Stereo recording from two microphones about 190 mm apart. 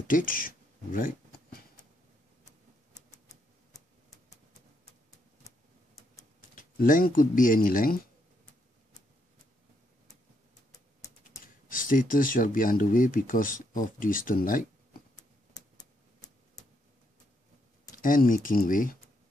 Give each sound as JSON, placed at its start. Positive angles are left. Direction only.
{"t": 0.1, "sound": "a sound", "side_deg": 45}
{"t": 6.5, "sound": "speech", "side_deg": 45}
{"t": 11.7, "sound": "speech", "side_deg": 45}
{"t": 15.5, "sound": "tick", "side_deg": 20}
{"t": 17.9, "sound": "speech", "side_deg": 45}